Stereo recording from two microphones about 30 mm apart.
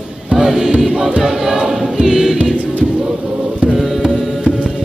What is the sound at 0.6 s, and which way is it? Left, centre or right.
Music, right.